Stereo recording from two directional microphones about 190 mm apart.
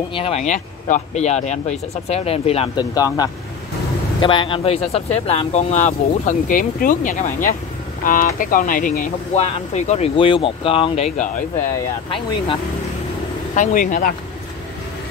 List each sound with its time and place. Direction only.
0.1 s speech: 30° left (ahead or behind)
13.6 s speech: 45° left (ahead or behind)